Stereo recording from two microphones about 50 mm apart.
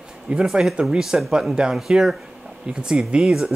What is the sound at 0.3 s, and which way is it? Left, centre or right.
Speech, centre.